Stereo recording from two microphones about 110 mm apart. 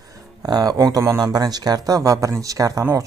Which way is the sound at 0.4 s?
35° right (ahead or behind).